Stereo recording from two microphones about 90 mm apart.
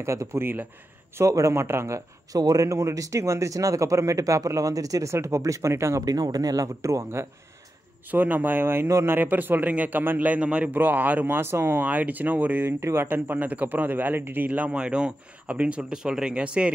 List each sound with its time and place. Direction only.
0.0 s a man's voice: 30° right (ahead or behind)
6.0 s a man's voice: 45° right (ahead or behind)
8.1 s speech: 20° right (ahead or behind)